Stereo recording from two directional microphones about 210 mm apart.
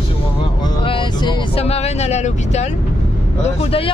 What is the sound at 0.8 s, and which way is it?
Speech, 25° left (ahead or behind).